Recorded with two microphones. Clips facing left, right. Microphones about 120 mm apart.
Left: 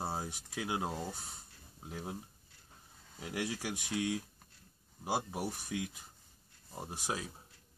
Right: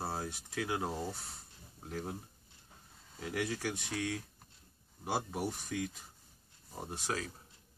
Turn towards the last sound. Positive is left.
turn(degrees=15)  # may be behind; listen again after turning